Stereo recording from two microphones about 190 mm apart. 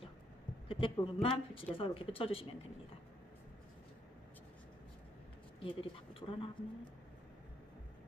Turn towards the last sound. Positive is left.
turn(degrees=30)  # may be behind; listen again after turning